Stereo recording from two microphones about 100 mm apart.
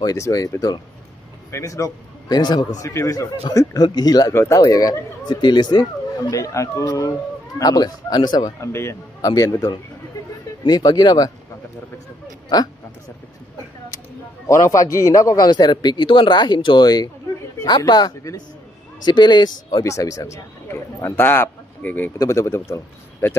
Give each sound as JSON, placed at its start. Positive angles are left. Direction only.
{"t": 0.0, "sound": "a man's voice", "side_deg": 35}
{"t": 2.9, "sound": "speech", "side_deg": 35}
{"t": 4.3, "sound": "speech", "side_deg": 30}
{"t": 6.3, "sound": "speech", "side_deg": 35}
{"t": 8.5, "sound": "speech", "side_deg": 25}
{"t": 14.5, "sound": "a man's voice", "side_deg": 30}
{"t": 19.8, "sound": "a man's voice", "side_deg": 30}